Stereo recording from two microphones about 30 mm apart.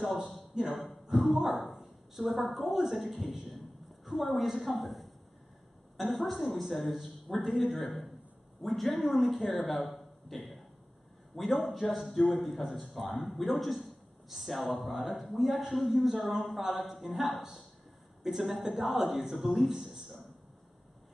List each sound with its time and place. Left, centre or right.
0.5 s speech: right
1.1 s a sound: centre
1.8 s a woman's voice: centre
4.0 s a sound: centre
4.6 s a woman's voice: centre
18.3 s a man's voice: right